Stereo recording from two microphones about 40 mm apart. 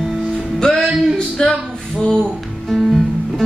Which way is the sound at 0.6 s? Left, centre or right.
Centre.